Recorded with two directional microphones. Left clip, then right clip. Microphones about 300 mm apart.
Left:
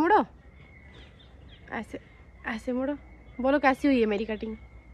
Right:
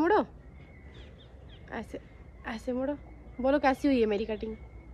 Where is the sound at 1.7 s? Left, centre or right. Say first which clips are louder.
Left 3 dB; centre.